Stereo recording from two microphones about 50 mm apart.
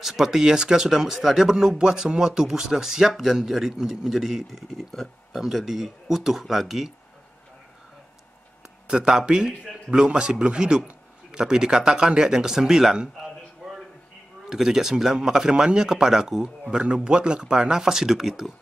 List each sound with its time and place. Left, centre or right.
0.0 s speech: centre
8.8 s speech: centre
13.6 s a sound: centre
14.5 s speech: centre